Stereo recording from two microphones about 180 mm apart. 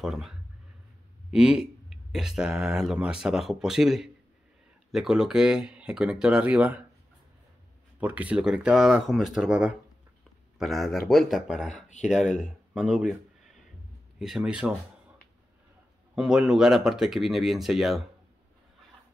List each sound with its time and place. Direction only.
0.0 s speech: centre (ahead or behind)
8.0 s speech: 10° right (ahead or behind)
11.6 s speech: 40° left (ahead or behind)
12.0 s speech: centre (ahead or behind)
16.2 s speech: 5° right (ahead or behind)